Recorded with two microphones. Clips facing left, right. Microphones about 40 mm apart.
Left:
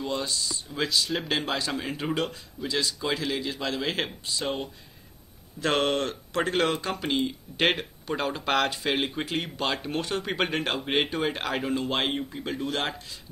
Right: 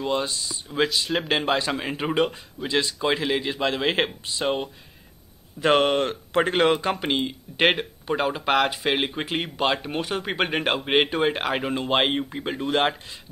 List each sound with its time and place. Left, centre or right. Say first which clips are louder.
0.0 s speech: right 4 dB; right
5.6 s speech: right 5 dB; centre
7.6 s a man's voice: right 4 dB; centre